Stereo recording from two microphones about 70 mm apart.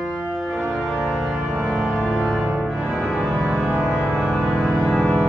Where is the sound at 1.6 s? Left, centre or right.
Centre.